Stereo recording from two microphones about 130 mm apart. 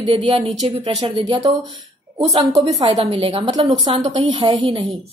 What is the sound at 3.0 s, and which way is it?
A woman's voice, 45° right (ahead or behind).